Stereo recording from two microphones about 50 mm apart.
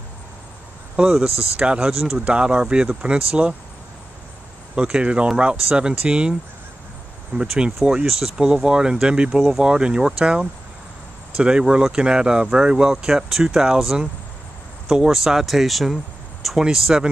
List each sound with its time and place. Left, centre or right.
0.9 s speech: centre
4.7 s speech: centre
7.3 s speech: centre
16.5 s speech: centre